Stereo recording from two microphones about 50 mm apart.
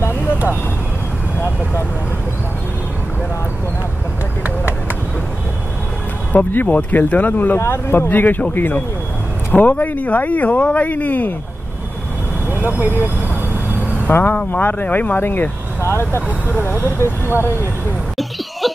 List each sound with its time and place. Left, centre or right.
6.3 s speech: left
7.5 s speech: left
8.1 s speech: left
12.4 s speech: right
13.7 s vehicle: left
14.5 s speech: left
15.8 s speech: left
16.3 s speech: left